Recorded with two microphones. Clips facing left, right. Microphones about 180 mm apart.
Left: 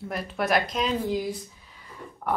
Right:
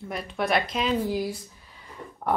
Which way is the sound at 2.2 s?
20° right (ahead or behind).